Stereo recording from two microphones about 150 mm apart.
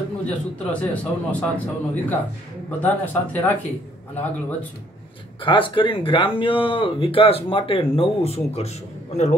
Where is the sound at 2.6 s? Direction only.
10° left (ahead or behind).